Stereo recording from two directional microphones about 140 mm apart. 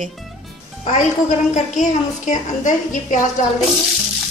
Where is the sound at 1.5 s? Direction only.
60° left (ahead or behind).